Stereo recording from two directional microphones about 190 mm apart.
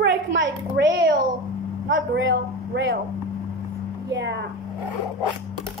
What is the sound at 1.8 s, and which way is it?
A man's voice, 75° right (ahead or behind).